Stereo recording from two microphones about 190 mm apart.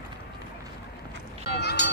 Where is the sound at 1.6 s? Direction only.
60° left (ahead or behind).